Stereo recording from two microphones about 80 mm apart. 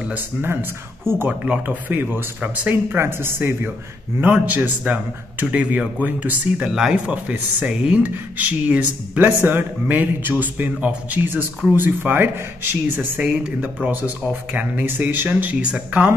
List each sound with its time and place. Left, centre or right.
0.0 s speech: right
1.4 s speech: centre
6.6 s speech: centre; by 13.2 s right
13.2 s speech: centre